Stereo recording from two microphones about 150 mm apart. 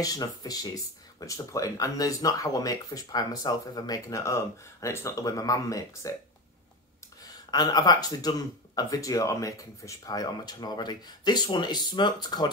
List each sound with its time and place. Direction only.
0.0 s speech: 25° left (ahead or behind)
7.2 s speech: 25° left (ahead or behind)